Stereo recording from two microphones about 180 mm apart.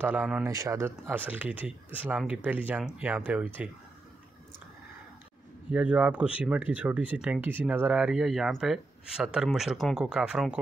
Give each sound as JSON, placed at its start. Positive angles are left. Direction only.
{"t": 0.0, "sound": "speech", "side_deg": -5}
{"t": 5.7, "sound": "speech", "side_deg": -5}